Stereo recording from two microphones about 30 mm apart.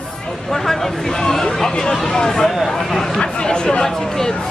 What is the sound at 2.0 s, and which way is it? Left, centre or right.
Speech, centre.